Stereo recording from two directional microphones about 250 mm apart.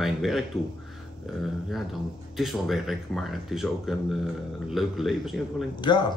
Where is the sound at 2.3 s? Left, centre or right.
Centre.